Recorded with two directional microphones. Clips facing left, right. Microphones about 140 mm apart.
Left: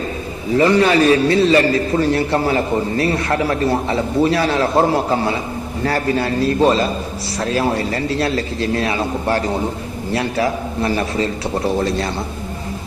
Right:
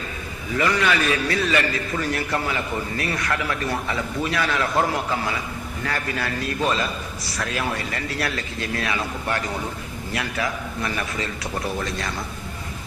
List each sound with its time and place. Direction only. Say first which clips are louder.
0.5 s a man's voice: left 8 dB; 30° left (ahead or behind)